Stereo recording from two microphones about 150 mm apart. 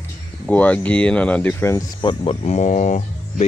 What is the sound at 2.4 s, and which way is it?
Speech, 50° left (ahead or behind).